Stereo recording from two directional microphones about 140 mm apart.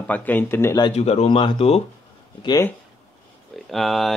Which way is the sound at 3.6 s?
Centre (ahead or behind).